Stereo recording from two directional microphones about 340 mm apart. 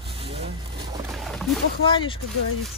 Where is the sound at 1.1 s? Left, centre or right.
Centre.